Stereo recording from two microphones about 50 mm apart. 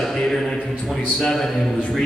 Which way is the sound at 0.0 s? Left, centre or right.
Centre.